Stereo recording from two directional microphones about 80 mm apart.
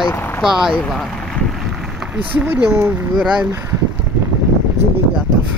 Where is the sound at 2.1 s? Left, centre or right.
Right.